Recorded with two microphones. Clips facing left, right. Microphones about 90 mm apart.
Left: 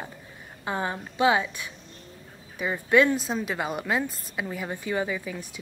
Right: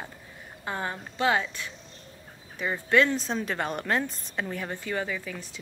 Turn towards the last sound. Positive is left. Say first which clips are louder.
# left 3 dB
turn(degrees=15)  # may be behind; listen again after turning